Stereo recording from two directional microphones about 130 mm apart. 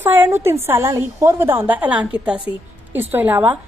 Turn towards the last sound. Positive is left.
turn(degrees=-15)  # may be behind; listen again after turning